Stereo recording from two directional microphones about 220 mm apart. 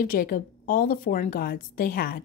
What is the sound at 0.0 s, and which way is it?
Speech, 40° left (ahead or behind).